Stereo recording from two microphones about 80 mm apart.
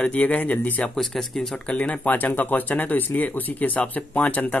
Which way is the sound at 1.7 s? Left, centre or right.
Centre.